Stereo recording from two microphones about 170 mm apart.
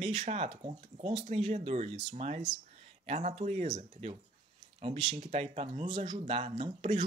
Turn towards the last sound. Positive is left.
turn(degrees=-35)  # may be behind; listen again after turning